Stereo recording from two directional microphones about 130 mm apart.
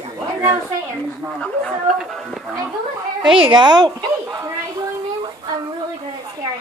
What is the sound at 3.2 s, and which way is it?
Speech, 5° right (ahead or behind).